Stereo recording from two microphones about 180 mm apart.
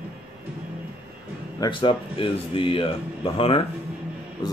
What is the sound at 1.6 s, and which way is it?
Speech, 30° left (ahead or behind).